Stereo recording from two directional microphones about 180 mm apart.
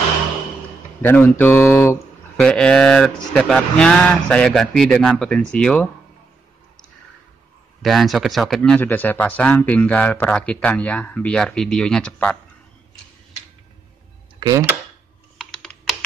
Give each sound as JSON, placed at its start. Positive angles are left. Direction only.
{"t": 1.0, "sound": "speech", "side_deg": 10}
{"t": 7.8, "sound": "speech", "side_deg": 0}
{"t": 14.4, "sound": "speech", "side_deg": -20}